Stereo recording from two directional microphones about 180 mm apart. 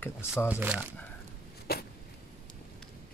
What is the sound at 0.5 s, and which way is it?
Speech, 10° right (ahead or behind).